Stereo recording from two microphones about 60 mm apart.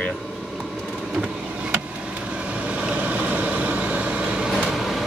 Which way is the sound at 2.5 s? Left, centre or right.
Right.